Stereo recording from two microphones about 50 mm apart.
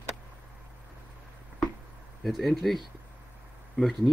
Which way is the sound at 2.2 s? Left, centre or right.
Centre.